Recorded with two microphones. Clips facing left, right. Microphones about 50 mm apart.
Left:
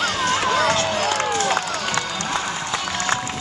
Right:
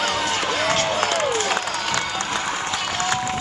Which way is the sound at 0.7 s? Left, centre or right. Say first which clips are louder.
Even; right.